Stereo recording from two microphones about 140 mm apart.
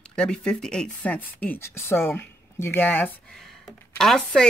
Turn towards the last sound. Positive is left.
turn(degrees=5)  # may be behind; listen again after turning